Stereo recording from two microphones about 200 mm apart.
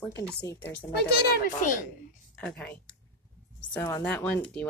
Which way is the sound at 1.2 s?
45° left (ahead or behind).